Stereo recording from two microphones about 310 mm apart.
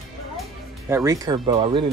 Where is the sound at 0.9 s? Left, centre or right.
Centre.